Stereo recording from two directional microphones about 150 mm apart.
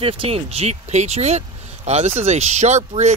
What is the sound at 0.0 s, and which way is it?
Speech, 40° right (ahead or behind).